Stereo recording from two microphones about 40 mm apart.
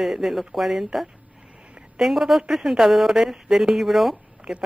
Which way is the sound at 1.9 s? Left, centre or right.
Centre.